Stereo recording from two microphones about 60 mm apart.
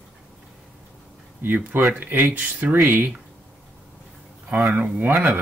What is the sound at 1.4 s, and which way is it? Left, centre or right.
Speech, right.